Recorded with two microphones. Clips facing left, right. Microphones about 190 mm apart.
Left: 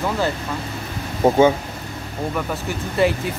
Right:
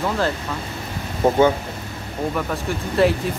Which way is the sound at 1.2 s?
10° left (ahead or behind).